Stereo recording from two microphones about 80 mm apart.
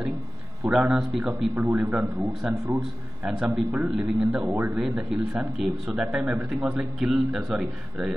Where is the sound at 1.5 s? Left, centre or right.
Centre.